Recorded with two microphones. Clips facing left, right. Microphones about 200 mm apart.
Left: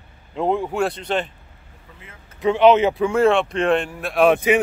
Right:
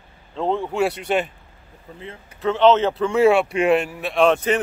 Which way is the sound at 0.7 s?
10° right (ahead or behind).